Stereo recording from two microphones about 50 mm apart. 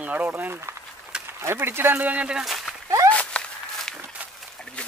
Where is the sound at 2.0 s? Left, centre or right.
Right.